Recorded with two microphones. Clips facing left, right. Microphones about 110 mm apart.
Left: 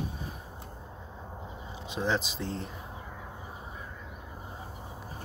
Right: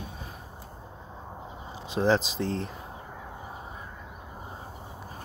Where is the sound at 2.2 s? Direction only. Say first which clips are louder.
Right 5 dB; 90° right.